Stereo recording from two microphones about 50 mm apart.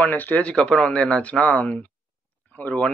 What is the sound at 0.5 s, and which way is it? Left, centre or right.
Speech, centre.